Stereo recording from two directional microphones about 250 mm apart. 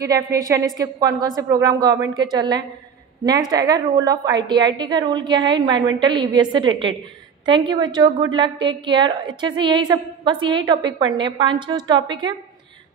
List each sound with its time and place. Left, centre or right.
0.7 s a woman's voice: centre